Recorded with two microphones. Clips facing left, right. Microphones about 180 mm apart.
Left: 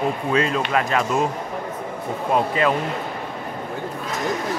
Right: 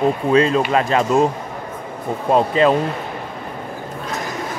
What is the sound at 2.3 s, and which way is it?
Speech, 30° right (ahead or behind).